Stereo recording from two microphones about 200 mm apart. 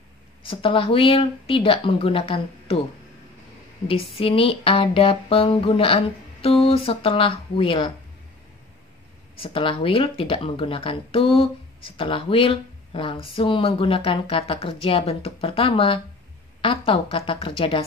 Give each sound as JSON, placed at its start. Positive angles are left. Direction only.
{"t": 0.4, "sound": "speech", "side_deg": 25}
{"t": 4.2, "sound": "speech", "side_deg": 30}
{"t": 9.4, "sound": "speech", "side_deg": 25}